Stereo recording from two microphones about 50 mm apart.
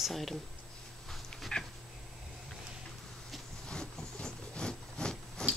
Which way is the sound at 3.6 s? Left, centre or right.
Centre.